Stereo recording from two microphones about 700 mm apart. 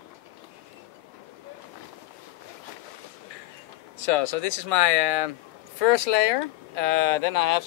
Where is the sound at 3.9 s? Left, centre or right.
Left.